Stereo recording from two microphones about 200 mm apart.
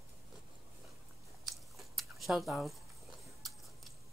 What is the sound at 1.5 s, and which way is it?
Biting, centre (ahead or behind).